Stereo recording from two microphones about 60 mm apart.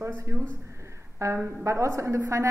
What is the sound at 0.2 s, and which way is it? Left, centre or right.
A woman's voice, right.